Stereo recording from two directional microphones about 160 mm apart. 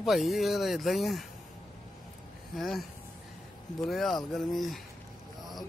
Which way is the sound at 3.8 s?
Centre (ahead or behind).